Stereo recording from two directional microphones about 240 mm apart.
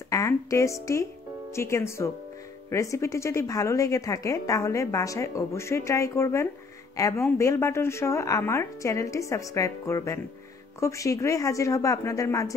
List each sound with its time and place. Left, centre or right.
0.1 s a woman's voice: centre